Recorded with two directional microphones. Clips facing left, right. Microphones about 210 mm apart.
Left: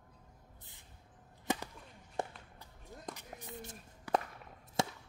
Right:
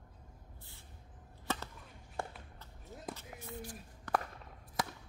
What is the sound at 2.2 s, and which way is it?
Walk, 20° left (ahead or behind).